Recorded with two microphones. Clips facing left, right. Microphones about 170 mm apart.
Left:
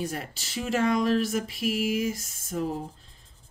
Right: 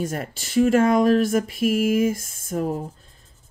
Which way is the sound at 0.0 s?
50° right (ahead or behind).